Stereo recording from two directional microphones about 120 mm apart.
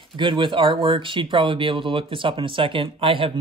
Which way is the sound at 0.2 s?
40° right (ahead or behind).